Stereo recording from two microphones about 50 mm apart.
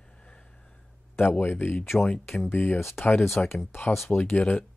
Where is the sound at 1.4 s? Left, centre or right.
Left.